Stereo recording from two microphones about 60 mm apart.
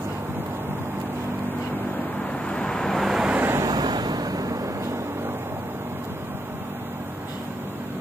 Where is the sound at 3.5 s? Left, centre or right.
Right.